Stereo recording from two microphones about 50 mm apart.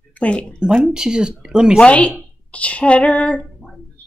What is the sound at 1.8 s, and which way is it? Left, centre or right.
Speech, left.